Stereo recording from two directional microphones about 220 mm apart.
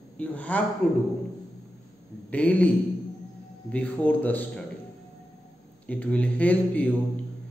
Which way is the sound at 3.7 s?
5° left (ahead or behind).